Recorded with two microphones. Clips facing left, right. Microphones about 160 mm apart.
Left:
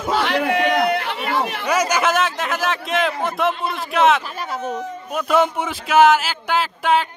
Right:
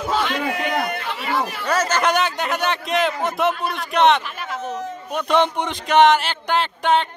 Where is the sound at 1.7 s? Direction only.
10° left (ahead or behind).